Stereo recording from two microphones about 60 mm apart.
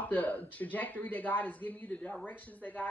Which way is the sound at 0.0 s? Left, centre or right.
Left.